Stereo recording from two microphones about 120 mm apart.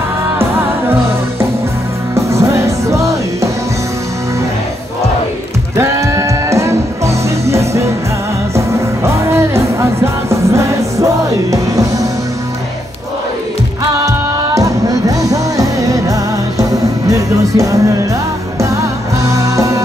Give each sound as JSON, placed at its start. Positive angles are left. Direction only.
{"t": 2.1, "sound": "music", "side_deg": -25}
{"t": 5.8, "sound": "music", "side_deg": -25}
{"t": 13.9, "sound": "music", "side_deg": -30}